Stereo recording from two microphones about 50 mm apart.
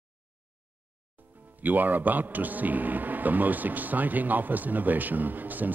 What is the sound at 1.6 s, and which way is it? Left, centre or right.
A man's voice, right.